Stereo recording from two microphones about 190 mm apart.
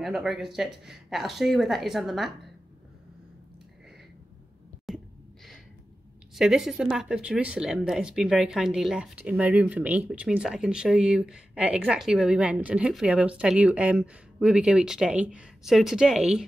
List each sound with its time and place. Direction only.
0.0 s speech: centre (ahead or behind)
4.9 s a sound: centre (ahead or behind)
6.3 s speech: centre (ahead or behind)